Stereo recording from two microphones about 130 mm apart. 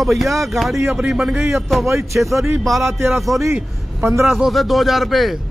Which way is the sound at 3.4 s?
20° right (ahead or behind).